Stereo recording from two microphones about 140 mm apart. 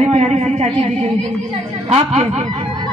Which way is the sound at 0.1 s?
55° right (ahead or behind).